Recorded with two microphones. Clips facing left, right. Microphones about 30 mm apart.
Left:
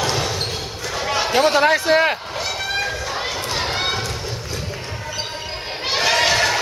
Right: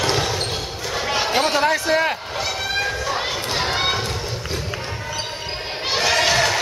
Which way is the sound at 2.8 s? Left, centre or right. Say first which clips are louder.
Right 1 dB; centre.